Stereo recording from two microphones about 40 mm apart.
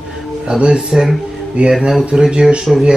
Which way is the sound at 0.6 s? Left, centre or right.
Right.